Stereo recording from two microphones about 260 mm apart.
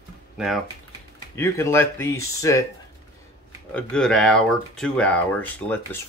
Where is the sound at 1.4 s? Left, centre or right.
Centre.